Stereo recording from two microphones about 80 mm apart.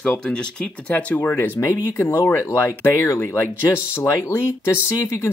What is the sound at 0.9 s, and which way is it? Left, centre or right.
Speech, left.